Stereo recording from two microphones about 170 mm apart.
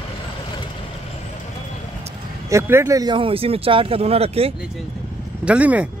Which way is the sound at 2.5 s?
15° right (ahead or behind).